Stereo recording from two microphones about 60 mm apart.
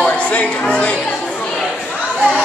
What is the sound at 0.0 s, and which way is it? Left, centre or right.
Music, left.